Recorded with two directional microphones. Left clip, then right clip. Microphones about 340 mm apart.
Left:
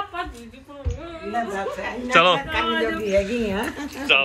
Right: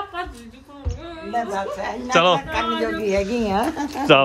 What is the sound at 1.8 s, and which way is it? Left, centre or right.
A man's voice, centre.